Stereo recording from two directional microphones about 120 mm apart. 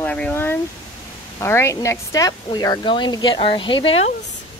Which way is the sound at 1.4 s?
20° left (ahead or behind).